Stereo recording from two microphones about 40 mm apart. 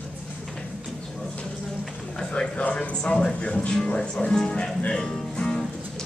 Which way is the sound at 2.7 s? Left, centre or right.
Left.